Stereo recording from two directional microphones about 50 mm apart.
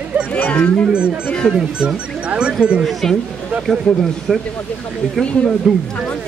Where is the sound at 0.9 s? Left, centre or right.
Right.